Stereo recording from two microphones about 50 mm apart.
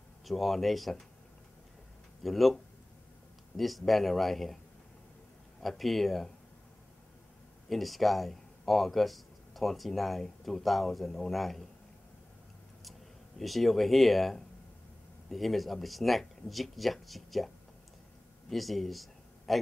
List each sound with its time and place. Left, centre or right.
0.2 s speech: centre
2.2 s speech: centre
5.6 s speech: centre
7.7 s speech: centre
13.4 s speech: centre
18.5 s speech: centre